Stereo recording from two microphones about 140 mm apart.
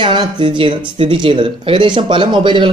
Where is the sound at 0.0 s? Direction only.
35° right (ahead or behind).